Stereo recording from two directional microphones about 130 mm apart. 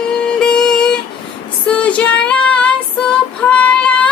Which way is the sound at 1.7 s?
10° left (ahead or behind).